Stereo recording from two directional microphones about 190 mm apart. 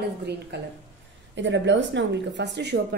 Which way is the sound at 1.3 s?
70° right (ahead or behind).